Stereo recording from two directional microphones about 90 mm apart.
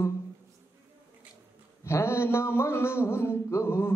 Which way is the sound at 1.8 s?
30° left (ahead or behind).